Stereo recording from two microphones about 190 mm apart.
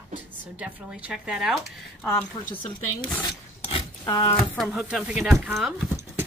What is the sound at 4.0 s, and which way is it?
Speech, 25° left (ahead or behind).